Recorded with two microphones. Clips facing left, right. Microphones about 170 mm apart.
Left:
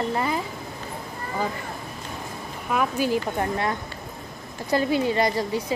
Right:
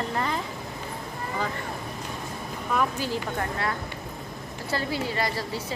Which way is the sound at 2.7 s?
10° left (ahead or behind).